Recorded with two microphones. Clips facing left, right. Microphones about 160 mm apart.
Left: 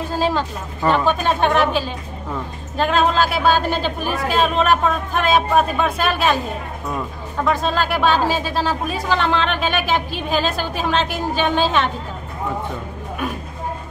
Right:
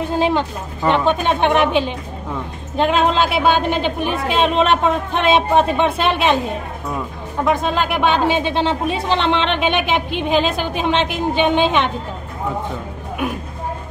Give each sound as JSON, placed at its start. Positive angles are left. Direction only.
{"t": 0.1, "sound": "speech", "side_deg": -20}
{"t": 7.4, "sound": "speech", "side_deg": -20}